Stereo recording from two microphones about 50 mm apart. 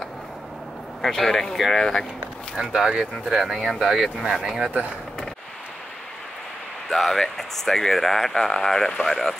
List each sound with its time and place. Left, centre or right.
1.0 s speech: centre
2.5 s speech: centre
4.6 s speech: right
6.9 s speech: centre